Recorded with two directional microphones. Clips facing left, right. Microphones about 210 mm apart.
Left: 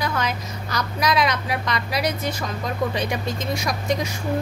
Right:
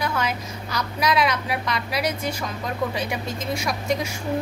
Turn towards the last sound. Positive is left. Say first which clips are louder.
# left 1 dB
turn(degrees=-5)  # may be behind; listen again after turning